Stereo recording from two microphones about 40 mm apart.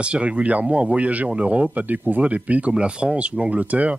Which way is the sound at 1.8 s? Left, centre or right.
Right.